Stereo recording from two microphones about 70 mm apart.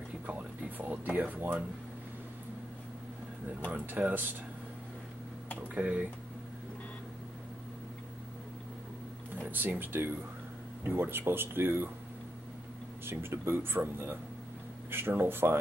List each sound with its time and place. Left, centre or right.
0.3 s a sound: right
3.7 s speech: right
5.6 s speech: right
9.3 s speech: right
13.0 s speech: right